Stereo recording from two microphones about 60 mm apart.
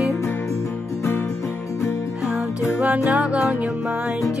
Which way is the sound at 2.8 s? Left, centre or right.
Right.